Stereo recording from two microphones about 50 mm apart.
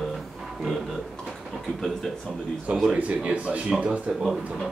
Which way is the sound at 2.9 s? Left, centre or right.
Right.